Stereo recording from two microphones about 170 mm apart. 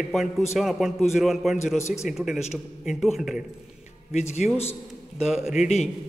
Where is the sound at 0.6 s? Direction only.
Centre (ahead or behind).